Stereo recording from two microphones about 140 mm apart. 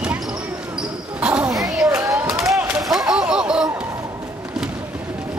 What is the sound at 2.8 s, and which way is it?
Whip, centre (ahead or behind).